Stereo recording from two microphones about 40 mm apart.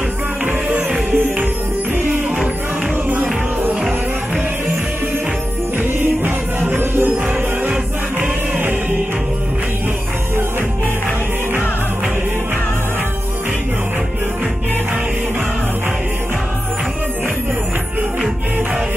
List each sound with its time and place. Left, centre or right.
0.7 s music: right
5.8 s music: right
8.2 s music: right